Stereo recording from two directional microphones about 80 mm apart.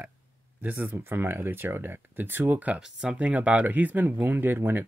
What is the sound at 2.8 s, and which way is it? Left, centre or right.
Speech, centre.